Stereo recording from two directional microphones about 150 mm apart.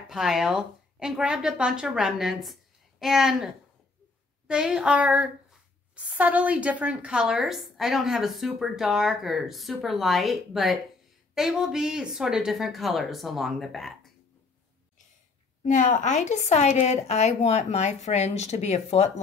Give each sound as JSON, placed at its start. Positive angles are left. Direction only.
{"t": 0.1, "sound": "speech", "side_deg": -5}
{"t": 15.6, "sound": "a woman's voice", "side_deg": 60}